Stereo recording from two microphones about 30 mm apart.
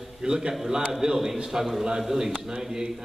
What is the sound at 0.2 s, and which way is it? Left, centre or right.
A man's voice, right.